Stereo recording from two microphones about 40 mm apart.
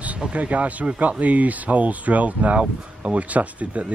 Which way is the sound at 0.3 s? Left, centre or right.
Right.